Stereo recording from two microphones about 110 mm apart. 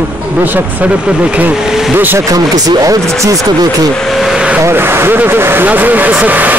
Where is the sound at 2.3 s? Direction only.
35° right (ahead or behind).